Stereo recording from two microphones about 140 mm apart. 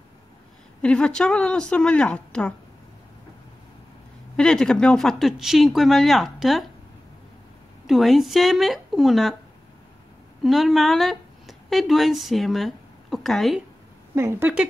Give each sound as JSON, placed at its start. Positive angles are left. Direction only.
{"t": 0.8, "sound": "speech", "side_deg": 5}
{"t": 4.4, "sound": "speech", "side_deg": 5}
{"t": 7.8, "sound": "speech", "side_deg": 0}
{"t": 10.4, "sound": "speech", "side_deg": 0}
{"t": 14.1, "sound": "speech", "side_deg": -20}